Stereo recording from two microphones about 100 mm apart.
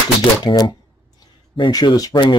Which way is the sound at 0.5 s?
55° left (ahead or behind).